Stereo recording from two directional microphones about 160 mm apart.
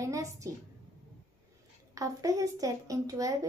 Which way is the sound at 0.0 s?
20° right (ahead or behind).